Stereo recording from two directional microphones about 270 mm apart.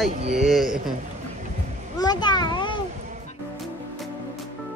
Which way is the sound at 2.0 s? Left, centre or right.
Centre.